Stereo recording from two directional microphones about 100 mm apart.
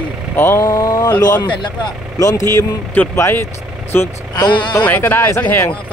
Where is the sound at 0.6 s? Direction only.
40° left (ahead or behind).